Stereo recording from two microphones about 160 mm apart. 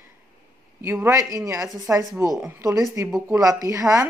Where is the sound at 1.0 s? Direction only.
20° right (ahead or behind).